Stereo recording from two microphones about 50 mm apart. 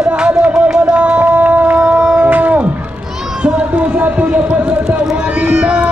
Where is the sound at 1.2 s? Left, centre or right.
Right.